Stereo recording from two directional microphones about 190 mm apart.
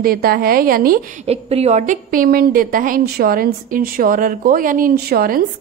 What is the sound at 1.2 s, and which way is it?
A woman's voice, 35° right (ahead or behind).